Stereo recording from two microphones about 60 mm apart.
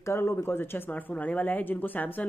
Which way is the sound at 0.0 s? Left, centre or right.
Left.